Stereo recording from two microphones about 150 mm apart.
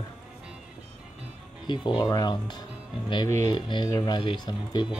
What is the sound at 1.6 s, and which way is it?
Speech, 30° left (ahead or behind).